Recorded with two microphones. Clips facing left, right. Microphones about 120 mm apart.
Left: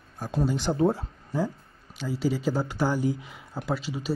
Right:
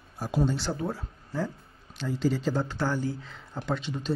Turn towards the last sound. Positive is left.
turn(degrees=5)  # may be behind; listen again after turning